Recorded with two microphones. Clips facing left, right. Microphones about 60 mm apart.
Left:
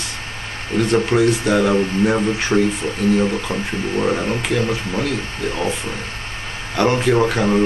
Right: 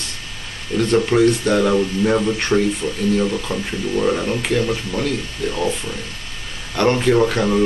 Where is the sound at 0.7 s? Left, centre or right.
Centre.